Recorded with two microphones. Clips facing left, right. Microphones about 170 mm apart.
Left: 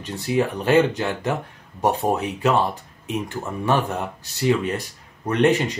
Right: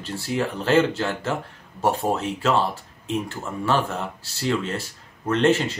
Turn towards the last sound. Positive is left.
turn(degrees=15)  # may be behind; listen again after turning